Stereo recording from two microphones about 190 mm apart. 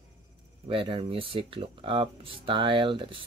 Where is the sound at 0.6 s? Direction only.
30° right (ahead or behind).